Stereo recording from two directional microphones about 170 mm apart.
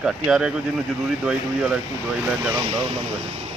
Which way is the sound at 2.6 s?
30° right (ahead or behind).